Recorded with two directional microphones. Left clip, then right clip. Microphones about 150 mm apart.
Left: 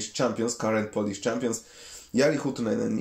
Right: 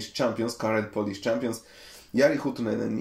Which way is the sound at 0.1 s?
30° left (ahead or behind).